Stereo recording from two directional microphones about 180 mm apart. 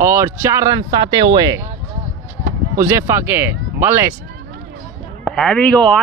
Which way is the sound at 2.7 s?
15° right (ahead or behind).